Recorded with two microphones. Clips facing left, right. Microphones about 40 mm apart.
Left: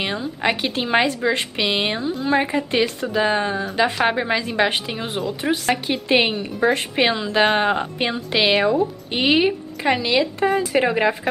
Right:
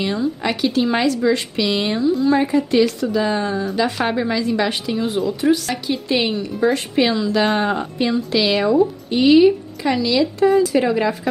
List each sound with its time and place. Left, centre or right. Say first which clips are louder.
0.2 s a woman's voice: right 2 dB; left